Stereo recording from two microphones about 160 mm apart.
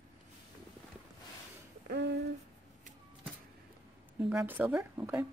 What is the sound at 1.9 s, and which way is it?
Speech, 90° right.